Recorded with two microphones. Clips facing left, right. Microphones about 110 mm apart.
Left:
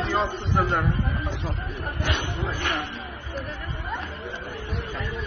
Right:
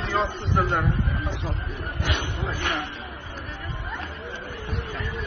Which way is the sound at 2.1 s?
15° right (ahead or behind).